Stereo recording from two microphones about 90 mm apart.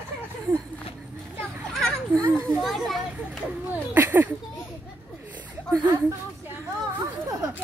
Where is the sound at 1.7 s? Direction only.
5° left (ahead or behind).